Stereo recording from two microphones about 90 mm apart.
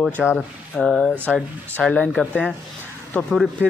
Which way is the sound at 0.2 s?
5° right (ahead or behind).